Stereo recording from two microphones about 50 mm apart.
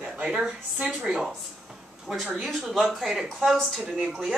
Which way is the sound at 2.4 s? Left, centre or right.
Centre.